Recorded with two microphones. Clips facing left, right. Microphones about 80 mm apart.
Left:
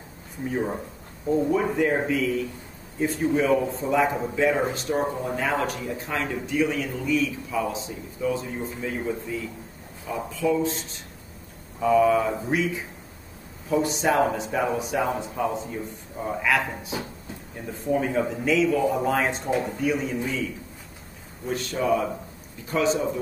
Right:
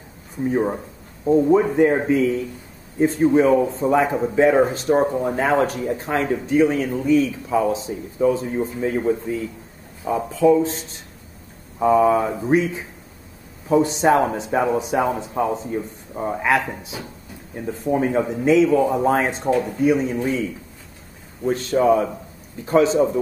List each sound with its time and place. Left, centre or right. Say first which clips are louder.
0.5 s speech: right 6 dB; right
11.8 s speech: right 3 dB; right
17.9 s speech: right 4 dB; right
21.5 s speech: right 7 dB; right